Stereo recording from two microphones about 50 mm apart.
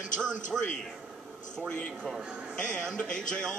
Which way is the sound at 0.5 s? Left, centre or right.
Centre.